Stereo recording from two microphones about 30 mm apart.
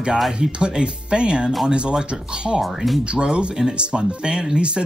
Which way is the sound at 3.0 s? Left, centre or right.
Right.